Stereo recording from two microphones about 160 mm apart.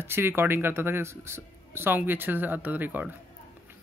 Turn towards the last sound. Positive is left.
turn(degrees=-10)  # may be behind; listen again after turning